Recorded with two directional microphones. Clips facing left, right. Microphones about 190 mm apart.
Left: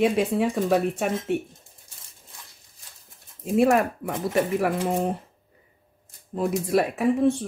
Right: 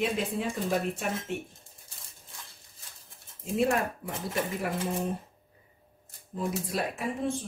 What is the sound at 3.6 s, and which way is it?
Speech, 70° left (ahead or behind).